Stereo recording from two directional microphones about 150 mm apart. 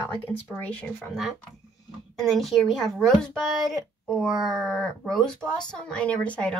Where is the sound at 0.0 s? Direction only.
15° left (ahead or behind).